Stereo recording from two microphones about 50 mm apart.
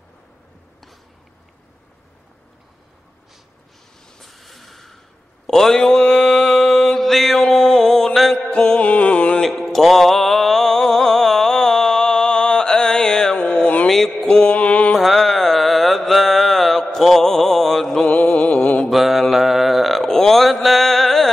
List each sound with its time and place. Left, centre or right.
4.2 s vehicle: centre
5.5 s mantra: centre
8.5 s music: centre
9.4 s mantra: centre
13.4 s a sound: centre
13.8 s mantra: centre
14.3 s mantra: left
15.0 s mantra: centre
18.0 s mantra: left
18.9 s mantra: centre